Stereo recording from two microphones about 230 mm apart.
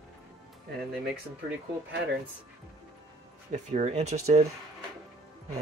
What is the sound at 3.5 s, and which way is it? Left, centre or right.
Speech, right.